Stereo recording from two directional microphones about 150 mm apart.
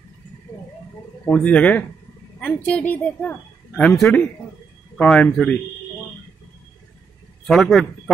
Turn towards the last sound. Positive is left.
turn(degrees=0)  # may be behind; listen again after turning